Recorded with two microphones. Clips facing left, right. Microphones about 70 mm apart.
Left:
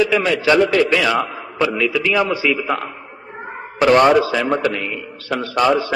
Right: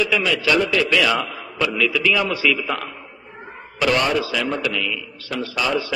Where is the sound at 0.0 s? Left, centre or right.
Left.